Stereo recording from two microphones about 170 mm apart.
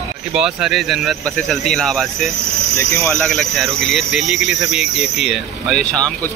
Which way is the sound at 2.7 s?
20° left (ahead or behind).